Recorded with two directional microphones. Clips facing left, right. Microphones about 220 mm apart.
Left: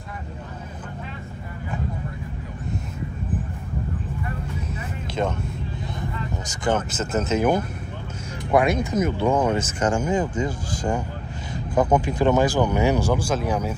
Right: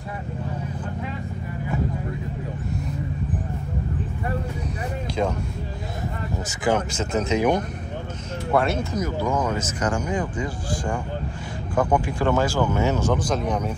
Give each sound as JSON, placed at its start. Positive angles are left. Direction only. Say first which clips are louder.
{"t": 6.6, "sound": "speech", "louder": "right 1 dB", "side_deg": 5}
{"t": 8.5, "sound": "speech", "louder": "left 2 dB", "side_deg": 15}
{"t": 9.0, "sound": "speech", "louder": "left 4 dB", "side_deg": 30}
{"t": 11.7, "sound": "speech", "louder": "left 2 dB", "side_deg": 20}